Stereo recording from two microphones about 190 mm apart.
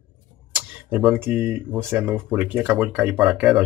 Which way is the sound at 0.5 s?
5° right (ahead or behind).